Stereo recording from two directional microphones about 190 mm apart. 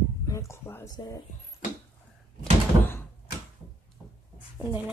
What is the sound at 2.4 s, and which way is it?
Door, 10° left (ahead or behind).